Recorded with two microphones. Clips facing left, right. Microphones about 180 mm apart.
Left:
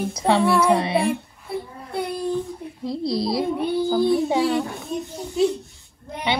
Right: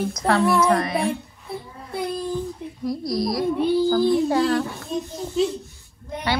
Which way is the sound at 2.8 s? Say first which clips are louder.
Even; 25° left (ahead or behind).